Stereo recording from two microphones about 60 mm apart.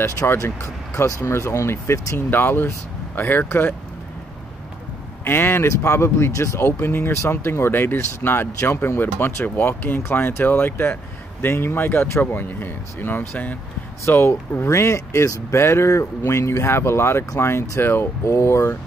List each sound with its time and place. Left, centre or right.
0.3 s speech: left
5.2 s speech: left
6.6 s speech: left
14.0 s speech: left